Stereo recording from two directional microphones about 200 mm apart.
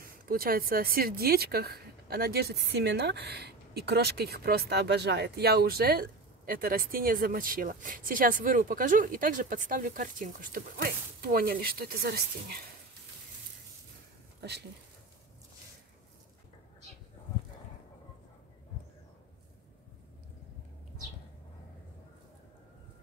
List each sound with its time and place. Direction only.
0.0 s speech: 45° right (ahead or behind)